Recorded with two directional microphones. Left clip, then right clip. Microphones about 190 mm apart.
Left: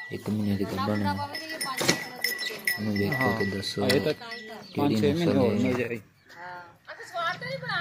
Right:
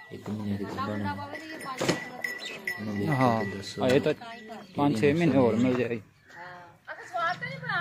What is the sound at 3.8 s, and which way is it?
Speech, 25° right (ahead or behind).